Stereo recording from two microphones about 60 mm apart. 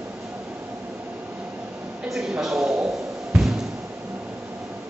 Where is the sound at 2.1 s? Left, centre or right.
Centre.